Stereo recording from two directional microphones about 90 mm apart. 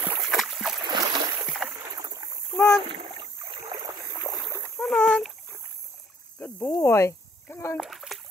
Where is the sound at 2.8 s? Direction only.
80° right; by 3.8 s 65° right (ahead or behind).